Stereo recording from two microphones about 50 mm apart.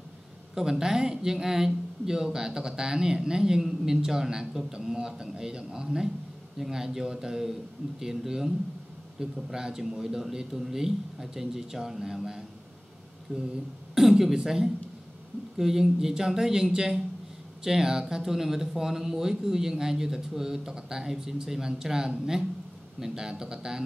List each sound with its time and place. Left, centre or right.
0.6 s speech: centre
13.3 s speech: right
13.9 s speech: centre